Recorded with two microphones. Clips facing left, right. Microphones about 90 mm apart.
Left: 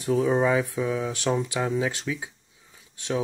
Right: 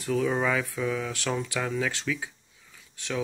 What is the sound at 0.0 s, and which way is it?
Speech, 25° left (ahead or behind).